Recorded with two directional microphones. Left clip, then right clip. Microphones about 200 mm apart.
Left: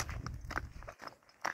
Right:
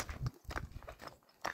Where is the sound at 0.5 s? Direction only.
20° right (ahead or behind).